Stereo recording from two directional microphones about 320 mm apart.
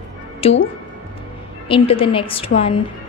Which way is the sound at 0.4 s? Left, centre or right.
Centre.